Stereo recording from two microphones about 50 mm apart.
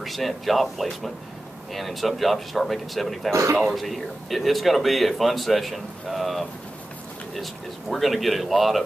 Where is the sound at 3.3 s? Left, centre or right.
Right.